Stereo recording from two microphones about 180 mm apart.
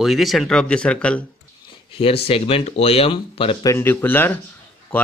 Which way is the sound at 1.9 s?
30° left (ahead or behind).